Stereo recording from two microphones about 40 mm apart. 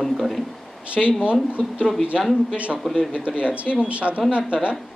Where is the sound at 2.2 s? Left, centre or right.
Centre.